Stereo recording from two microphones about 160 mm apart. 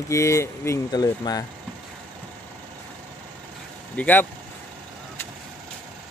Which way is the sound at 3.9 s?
10° left (ahead or behind).